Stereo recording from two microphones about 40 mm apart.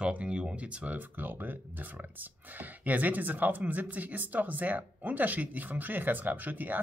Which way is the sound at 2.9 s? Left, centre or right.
Right.